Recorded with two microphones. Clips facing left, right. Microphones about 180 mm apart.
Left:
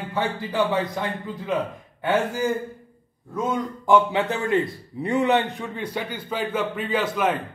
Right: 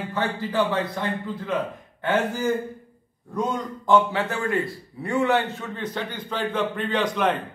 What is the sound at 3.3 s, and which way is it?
A man's voice, 10° left (ahead or behind).